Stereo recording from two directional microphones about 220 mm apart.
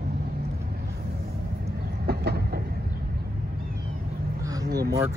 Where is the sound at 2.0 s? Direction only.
45° right (ahead or behind).